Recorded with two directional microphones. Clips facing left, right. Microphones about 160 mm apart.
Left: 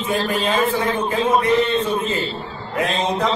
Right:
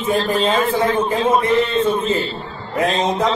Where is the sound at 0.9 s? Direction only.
35° right (ahead or behind).